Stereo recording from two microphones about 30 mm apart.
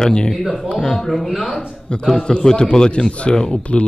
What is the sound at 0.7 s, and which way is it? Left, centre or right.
Speech, centre.